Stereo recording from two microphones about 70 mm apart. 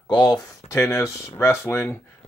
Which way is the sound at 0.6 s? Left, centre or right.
Left.